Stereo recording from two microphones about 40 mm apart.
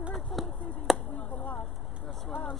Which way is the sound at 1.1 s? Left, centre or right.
Left.